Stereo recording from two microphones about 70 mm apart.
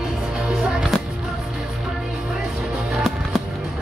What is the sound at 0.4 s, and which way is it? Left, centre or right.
Music, centre.